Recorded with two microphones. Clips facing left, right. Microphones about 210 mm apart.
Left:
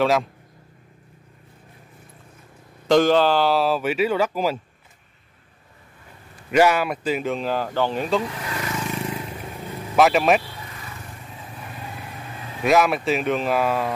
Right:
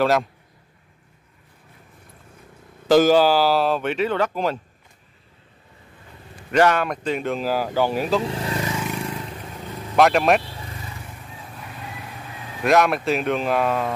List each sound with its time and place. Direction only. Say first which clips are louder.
0.0 s speech: even; centre (ahead or behind)
2.9 s speech: right 2 dB; 5° right (ahead or behind)
6.5 s speech: even; 10° left (ahead or behind); by 8.2 s 5° right (ahead or behind)
8.2 s vehicle: right 4 dB; 30° right (ahead or behind)
8.8 s vehicle: even; centre (ahead or behind)
9.9 s speech: even; centre (ahead or behind)
12.6 s speech: even; centre (ahead or behind)